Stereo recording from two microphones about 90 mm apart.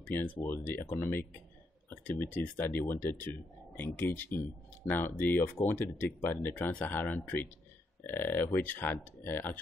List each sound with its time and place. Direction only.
0.0 s speech: 20° left (ahead or behind)
2.4 s speech: 20° left (ahead or behind)